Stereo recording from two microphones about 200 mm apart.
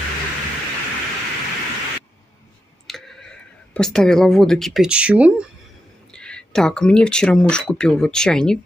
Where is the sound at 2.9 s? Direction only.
Centre (ahead or behind).